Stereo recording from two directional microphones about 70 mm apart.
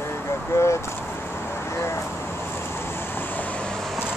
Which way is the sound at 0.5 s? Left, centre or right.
Left.